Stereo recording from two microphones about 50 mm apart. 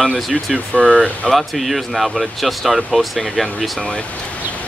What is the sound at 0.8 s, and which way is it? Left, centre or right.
Speech, right.